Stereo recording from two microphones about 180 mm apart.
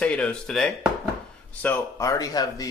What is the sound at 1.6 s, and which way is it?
Speech, 15° left (ahead or behind).